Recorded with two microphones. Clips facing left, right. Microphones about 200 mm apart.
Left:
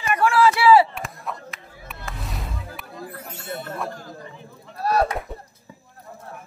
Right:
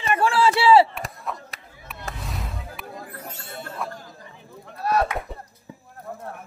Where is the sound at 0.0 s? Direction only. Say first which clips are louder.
Left 2 dB; 30° right (ahead or behind).